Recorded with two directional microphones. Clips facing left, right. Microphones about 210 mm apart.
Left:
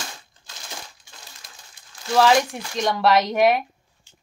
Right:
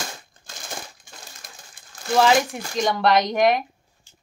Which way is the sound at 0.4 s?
50° right (ahead or behind).